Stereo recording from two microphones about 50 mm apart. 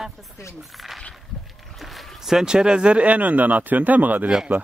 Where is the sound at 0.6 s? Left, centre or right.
Centre; by 4.3 s right.